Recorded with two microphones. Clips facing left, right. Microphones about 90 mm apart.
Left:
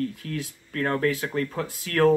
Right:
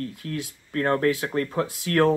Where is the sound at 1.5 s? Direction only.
30° right (ahead or behind).